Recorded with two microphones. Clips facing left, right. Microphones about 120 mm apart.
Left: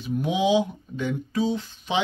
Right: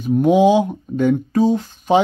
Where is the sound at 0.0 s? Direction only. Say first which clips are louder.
Right 11 dB; 50° right (ahead or behind).